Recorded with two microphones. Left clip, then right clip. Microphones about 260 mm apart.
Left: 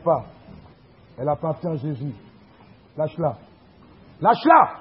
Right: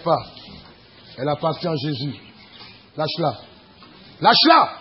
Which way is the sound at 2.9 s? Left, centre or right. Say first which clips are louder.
Right 2 dB; right.